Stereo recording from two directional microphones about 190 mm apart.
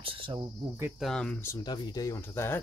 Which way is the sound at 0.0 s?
25° right (ahead or behind).